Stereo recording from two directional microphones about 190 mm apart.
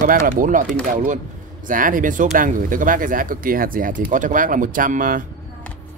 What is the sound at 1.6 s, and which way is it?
Speech, 45° right (ahead or behind).